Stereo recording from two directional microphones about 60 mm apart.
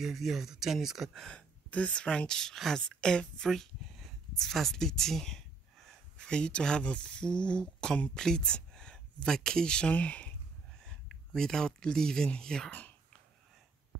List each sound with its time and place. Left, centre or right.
0.0 s speech: centre
1.3 s speech: left
10.8 s speech: centre